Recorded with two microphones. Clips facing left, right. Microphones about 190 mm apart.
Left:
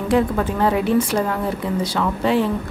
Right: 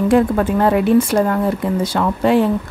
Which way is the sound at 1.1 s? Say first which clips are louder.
Right 5 dB; 45° right (ahead or behind).